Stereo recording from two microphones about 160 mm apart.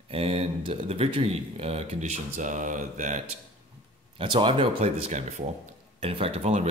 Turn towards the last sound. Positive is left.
turn(degrees=-40)  # may be behind; listen again after turning